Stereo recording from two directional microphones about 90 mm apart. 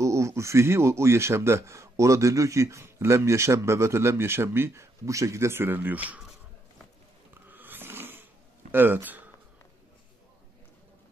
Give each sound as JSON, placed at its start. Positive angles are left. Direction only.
{"t": 0.0, "sound": "speech", "side_deg": -35}
{"t": 7.4, "sound": "a sound", "side_deg": -20}
{"t": 8.7, "sound": "speech", "side_deg": -20}